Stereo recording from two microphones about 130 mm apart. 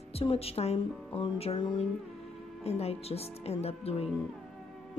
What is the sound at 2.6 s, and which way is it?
A woman's voice, 55° left (ahead or behind).